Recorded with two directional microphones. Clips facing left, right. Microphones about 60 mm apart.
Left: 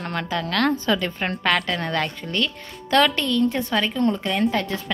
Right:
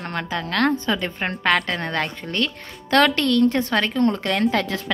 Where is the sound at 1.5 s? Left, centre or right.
Right.